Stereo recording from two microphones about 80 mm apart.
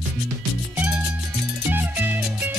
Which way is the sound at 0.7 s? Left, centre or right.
Centre.